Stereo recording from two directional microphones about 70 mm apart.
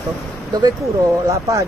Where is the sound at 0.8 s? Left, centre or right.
Right.